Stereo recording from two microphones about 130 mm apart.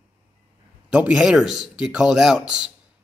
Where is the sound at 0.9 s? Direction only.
10° right (ahead or behind).